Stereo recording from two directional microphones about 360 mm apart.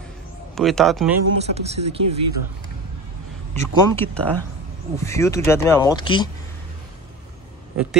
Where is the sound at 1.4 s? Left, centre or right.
Centre.